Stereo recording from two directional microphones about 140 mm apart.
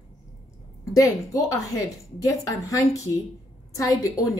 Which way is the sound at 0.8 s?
25° left (ahead or behind).